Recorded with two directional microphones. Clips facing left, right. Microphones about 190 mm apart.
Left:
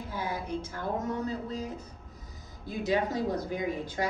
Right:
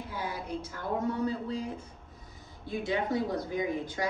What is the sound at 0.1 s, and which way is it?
Speech, 45° left (ahead or behind).